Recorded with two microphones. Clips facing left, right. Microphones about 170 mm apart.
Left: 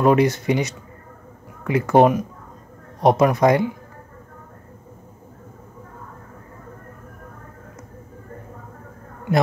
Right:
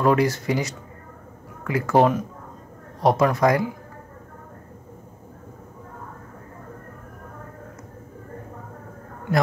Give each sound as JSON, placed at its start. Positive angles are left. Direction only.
{"t": 0.0, "sound": "speech", "side_deg": 20}